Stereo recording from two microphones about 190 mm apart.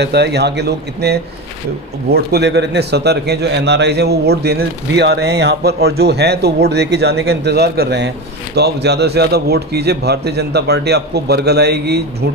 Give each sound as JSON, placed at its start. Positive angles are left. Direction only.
{"t": 0.0, "sound": "a man's voice", "side_deg": -60}